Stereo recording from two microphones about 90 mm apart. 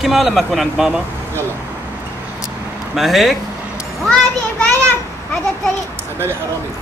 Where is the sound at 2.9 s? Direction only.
Centre (ahead or behind).